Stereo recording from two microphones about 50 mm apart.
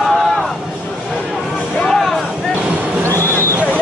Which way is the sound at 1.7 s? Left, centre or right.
Centre.